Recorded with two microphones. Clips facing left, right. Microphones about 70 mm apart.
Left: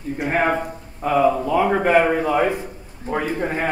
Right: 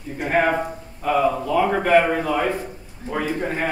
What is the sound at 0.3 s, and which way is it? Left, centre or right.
A man's voice, centre.